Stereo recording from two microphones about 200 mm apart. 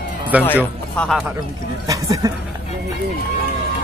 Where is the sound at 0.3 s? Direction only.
5° right (ahead or behind).